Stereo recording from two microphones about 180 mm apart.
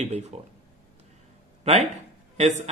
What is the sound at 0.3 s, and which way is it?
Speech, 35° right (ahead or behind).